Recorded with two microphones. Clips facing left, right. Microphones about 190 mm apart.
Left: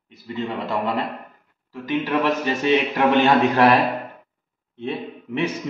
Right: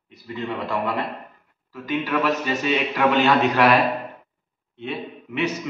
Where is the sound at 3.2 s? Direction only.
30° left (ahead or behind).